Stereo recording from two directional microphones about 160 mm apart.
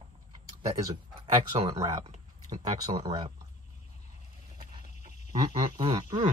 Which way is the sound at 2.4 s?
25° right (ahead or behind).